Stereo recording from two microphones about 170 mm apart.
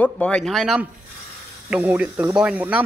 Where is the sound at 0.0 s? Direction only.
5° left (ahead or behind).